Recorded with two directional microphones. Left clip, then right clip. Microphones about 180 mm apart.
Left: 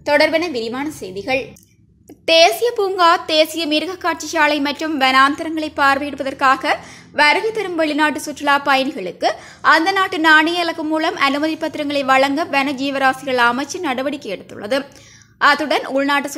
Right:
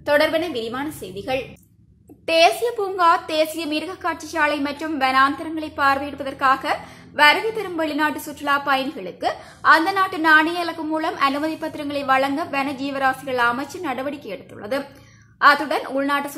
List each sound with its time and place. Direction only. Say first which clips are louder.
0.0 s a woman's voice: left 4 dB; 25° left (ahead or behind)
2.2 s a woman's voice: left 4 dB; 35° left (ahead or behind)